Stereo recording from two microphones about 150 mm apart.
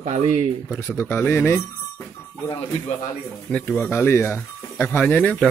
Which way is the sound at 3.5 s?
10° left (ahead or behind).